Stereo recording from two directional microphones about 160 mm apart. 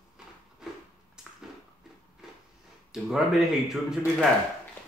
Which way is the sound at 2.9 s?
5° right (ahead or behind).